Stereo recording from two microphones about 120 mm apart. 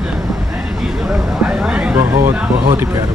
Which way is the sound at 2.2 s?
20° right (ahead or behind).